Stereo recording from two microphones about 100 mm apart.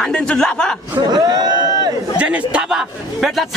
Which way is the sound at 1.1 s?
45° right (ahead or behind).